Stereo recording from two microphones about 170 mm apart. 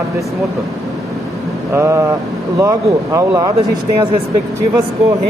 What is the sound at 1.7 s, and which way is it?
Speech, 15° right (ahead or behind).